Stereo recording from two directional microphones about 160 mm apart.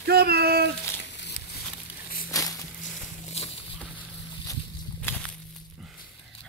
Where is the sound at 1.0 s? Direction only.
90° left.